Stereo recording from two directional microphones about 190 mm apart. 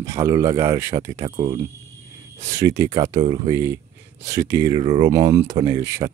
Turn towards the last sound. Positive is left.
turn(degrees=-15)  # may be behind; listen again after turning